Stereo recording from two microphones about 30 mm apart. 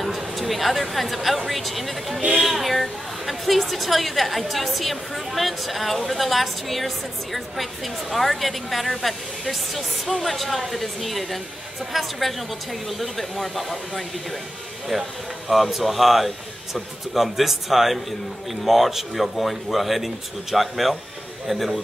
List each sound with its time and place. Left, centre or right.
0.0 s a woman's voice: centre